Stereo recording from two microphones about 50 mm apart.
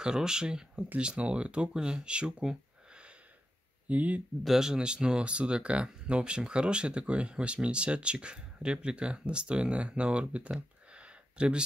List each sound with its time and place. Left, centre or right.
0.0 s speech: centre
3.9 s speech: right
4.5 s speech: centre
10.9 s a sound: right